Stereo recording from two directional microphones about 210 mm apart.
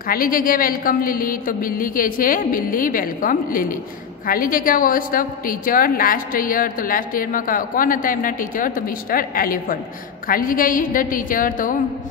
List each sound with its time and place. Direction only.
0.1 s a woman's voice: 40° left (ahead or behind)